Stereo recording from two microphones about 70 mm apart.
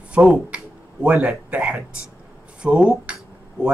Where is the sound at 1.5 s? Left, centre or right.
Centre.